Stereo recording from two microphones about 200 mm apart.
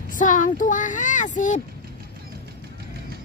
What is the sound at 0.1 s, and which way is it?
Speech, 40° left (ahead or behind).